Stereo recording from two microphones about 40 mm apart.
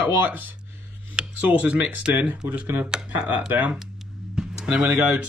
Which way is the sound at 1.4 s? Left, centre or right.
Right.